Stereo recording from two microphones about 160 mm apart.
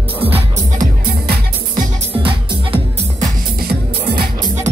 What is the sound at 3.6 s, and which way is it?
Music, 70° right (ahead or behind).